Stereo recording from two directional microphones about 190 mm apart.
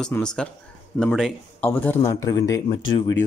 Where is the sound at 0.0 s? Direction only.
5° left (ahead or behind).